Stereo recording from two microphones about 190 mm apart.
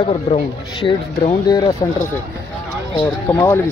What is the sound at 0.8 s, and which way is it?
Speech, 25° left (ahead or behind).